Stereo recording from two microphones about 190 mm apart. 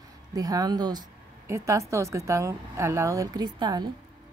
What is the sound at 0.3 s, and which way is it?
A woman's voice, 20° right (ahead or behind).